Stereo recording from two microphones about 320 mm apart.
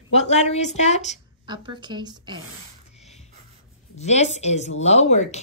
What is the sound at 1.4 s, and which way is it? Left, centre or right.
A woman's voice, centre.